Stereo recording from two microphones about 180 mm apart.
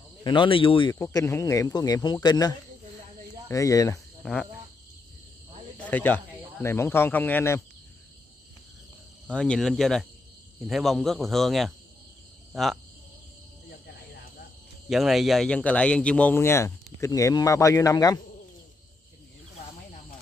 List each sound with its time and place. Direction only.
0.2 s speech: 25° left (ahead or behind)
0.9 s a man's voice: 15° left (ahead or behind)
4.2 s cricket: 5° left (ahead or behind)
5.8 s speech: 10° left (ahead or behind)
9.3 s a man's voice: 5° left (ahead or behind)
14.9 s a man's voice: centre (ahead or behind); by 18.2 s 20° left (ahead or behind)